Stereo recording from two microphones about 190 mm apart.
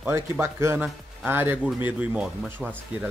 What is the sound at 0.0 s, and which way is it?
Speech, 15° right (ahead or behind).